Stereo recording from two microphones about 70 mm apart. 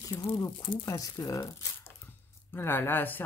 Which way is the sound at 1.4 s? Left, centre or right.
Left.